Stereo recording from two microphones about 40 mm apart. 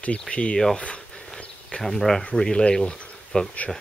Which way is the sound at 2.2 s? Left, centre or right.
Left.